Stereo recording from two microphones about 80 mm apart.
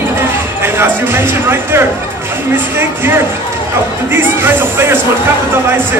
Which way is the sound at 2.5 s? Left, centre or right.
Right.